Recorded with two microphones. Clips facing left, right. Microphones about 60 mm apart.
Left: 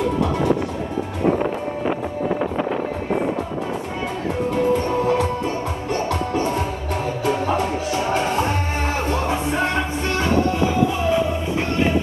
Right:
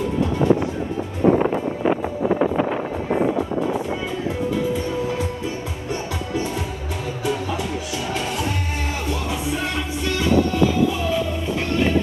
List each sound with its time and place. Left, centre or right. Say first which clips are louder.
4.6 s music: left 4 dB; left
6.3 s music: left 4 dB; left